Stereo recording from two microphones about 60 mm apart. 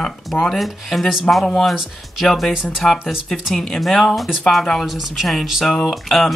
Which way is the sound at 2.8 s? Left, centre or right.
Centre.